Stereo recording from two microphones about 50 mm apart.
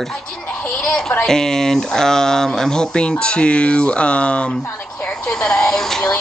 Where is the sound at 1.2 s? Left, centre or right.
Centre.